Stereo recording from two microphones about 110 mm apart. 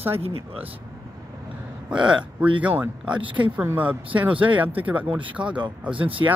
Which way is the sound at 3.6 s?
15° right (ahead or behind).